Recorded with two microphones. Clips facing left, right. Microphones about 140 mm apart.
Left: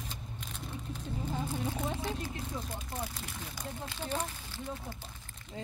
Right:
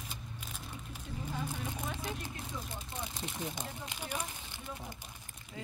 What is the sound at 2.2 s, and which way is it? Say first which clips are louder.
Speech: left 4 dB; 20° right (ahead or behind).